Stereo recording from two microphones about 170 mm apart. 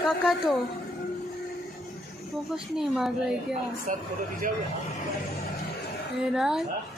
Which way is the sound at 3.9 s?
50° right (ahead or behind).